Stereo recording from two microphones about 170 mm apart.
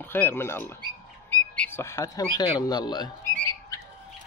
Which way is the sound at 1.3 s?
10° left (ahead or behind).